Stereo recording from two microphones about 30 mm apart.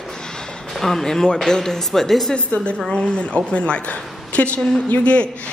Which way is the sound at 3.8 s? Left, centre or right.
Left.